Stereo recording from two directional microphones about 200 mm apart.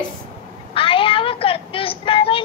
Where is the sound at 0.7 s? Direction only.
25° left (ahead or behind).